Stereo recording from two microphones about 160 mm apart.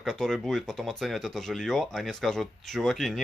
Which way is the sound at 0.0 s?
Centre (ahead or behind).